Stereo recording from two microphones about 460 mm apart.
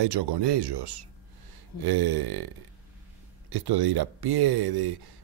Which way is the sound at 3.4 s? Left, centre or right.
Right.